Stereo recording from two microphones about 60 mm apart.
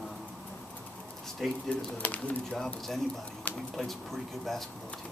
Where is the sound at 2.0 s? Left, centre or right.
Left.